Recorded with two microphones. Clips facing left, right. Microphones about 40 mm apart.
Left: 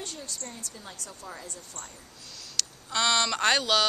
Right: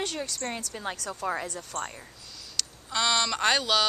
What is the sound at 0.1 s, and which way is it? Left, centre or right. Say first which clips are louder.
A woman's voice: right 8 dB; right.